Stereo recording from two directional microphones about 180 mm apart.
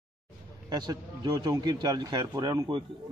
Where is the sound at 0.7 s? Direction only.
25° right (ahead or behind).